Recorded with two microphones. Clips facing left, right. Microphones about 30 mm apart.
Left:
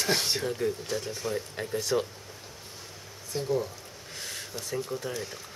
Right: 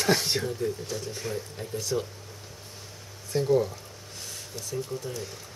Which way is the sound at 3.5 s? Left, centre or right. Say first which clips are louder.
Right 5 dB; centre.